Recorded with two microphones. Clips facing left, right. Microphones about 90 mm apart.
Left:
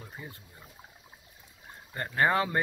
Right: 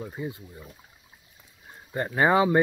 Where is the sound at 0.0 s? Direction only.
15° right (ahead or behind).